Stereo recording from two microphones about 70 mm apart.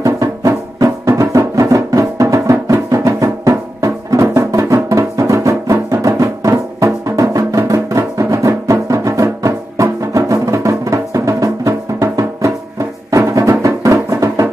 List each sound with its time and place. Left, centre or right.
0.0 s music: right